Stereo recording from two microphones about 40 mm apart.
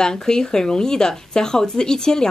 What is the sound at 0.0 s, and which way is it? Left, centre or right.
Speech, centre.